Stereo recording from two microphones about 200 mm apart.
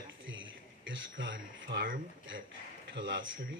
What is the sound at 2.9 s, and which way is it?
Speech, 70° right (ahead or behind).